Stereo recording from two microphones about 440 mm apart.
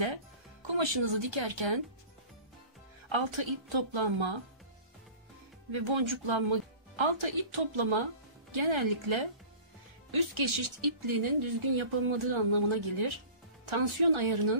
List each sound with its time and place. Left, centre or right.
0.0 s music: right
3.1 s speech: right
5.7 s speech: right